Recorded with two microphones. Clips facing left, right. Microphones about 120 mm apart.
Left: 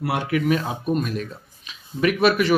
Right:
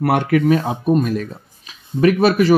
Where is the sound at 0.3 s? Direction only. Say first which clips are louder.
Right 6 dB; 35° right (ahead or behind).